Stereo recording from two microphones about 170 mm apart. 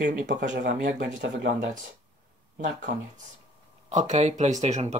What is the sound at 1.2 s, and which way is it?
Speech, 80° right.